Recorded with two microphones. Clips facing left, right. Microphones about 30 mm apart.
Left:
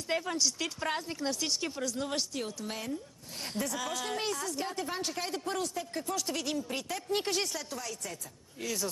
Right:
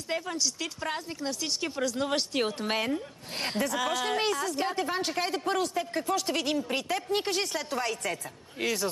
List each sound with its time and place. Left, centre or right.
0.1 s speech: centre
2.0 s speech: right
2.3 s a woman's voice: right
3.6 s speech: right
7.7 s a woman's voice: right